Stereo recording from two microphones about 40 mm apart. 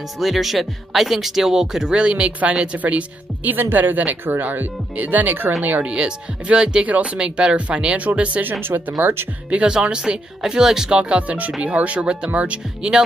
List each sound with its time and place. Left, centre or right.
0.2 s speech: centre
2.0 s speech: right
2.8 s speech: right
5.9 s speech: right
6.8 s speech: right
8.4 s speech: right
8.9 s speech: right
9.7 s speech: right
11.0 s speech: right